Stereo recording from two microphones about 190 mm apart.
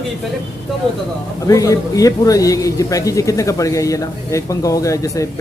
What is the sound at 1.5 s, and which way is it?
A man's voice, 15° left (ahead or behind).